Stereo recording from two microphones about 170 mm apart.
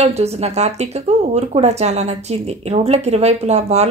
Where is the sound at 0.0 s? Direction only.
40° right (ahead or behind).